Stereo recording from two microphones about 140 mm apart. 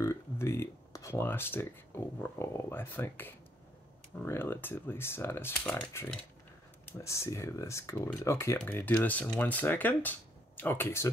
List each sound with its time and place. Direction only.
0.0 s speech: 20° left (ahead or behind)